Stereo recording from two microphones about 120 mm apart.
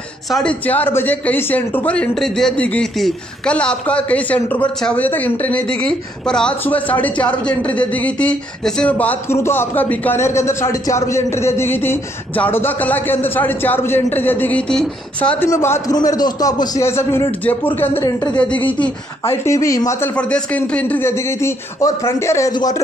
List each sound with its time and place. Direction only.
0.3 s a man's voice: 10° left (ahead or behind)
15.5 s a man's voice: 25° left (ahead or behind)
16.8 s a man's voice: 20° left (ahead or behind)
19.4 s a man's voice: 25° left (ahead or behind)
20.2 s a man's voice: 10° left (ahead or behind)
22.5 s speech: 35° left (ahead or behind)